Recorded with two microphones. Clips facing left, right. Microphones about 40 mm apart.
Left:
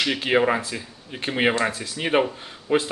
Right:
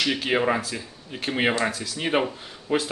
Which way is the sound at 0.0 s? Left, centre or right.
Centre.